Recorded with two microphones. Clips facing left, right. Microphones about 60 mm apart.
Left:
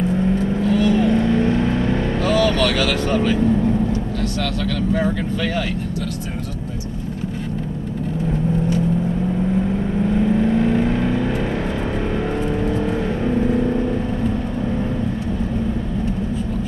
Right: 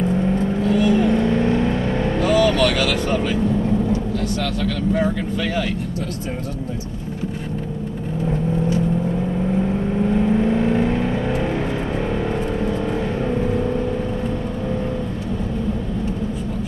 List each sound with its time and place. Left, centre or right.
0.2 s vehicle: centre
4.4 s speech: centre
10.0 s vehicle: centre
12.6 s vehicle: centre